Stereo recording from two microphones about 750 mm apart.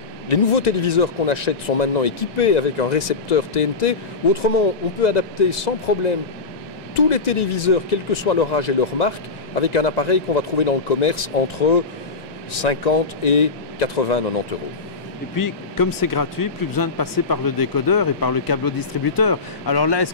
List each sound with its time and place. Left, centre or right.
0.3 s speech: left
15.3 s speech: left